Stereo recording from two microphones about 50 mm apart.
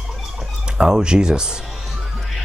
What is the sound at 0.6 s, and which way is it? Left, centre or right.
Speech, centre.